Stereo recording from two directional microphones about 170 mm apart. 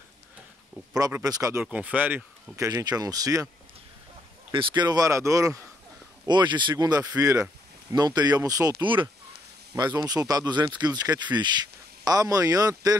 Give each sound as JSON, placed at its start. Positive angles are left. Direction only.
{"t": 0.9, "sound": "speech", "side_deg": -20}
{"t": 1.6, "sound": "speech", "side_deg": -10}
{"t": 4.5, "sound": "speech", "side_deg": -25}